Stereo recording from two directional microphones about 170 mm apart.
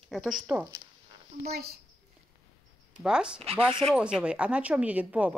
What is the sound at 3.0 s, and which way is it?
Speech, 5° right (ahead or behind).